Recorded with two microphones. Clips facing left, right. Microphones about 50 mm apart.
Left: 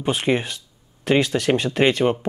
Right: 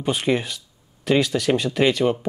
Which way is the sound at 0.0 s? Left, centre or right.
Left.